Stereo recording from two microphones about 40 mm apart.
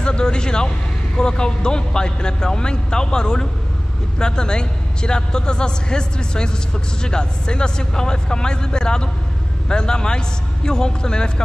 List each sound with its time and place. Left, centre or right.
0.0 s a man's voice: left